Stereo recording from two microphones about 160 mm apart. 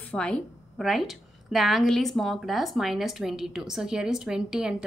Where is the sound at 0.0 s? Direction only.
5° left (ahead or behind).